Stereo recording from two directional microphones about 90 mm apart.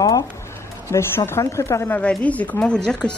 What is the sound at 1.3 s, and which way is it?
Speech, 30° left (ahead or behind).